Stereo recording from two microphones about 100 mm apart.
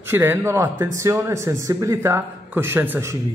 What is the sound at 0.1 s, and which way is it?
A man's voice, 25° right (ahead or behind).